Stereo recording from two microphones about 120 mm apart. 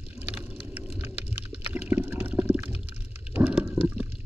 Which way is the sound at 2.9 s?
15° right (ahead or behind).